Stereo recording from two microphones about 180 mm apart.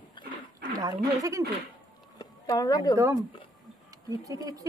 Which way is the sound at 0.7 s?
20° right (ahead or behind).